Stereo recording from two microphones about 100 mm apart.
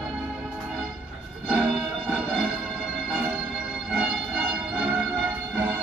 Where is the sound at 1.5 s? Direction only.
Centre (ahead or behind).